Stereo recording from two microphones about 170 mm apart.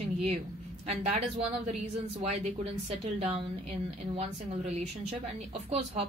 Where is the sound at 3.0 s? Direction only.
35° right (ahead or behind).